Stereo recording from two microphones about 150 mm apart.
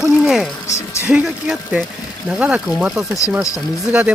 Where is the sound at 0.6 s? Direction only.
20° left (ahead or behind).